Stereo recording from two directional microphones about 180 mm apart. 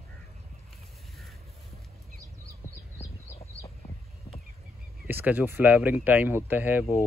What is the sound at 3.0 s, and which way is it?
Bird, 35° left (ahead or behind).